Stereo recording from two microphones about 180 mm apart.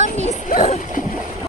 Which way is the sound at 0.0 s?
40° right (ahead or behind).